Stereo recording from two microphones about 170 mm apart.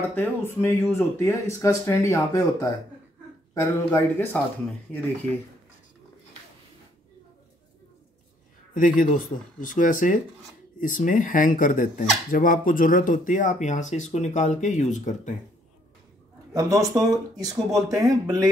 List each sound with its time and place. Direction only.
0.1 s speech: 15° left (ahead or behind)
8.7 s speech: 50° left (ahead or behind)
16.5 s speech: 20° right (ahead or behind)